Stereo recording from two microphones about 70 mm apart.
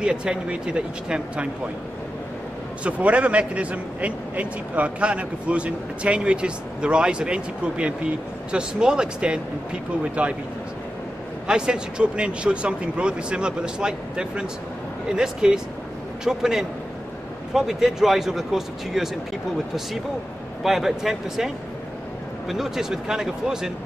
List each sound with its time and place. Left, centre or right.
0.0 s a man's voice: centre
2.8 s a man's voice: centre
11.4 s a man's voice: centre
20.6 s speech: centre
22.5 s a man's voice: centre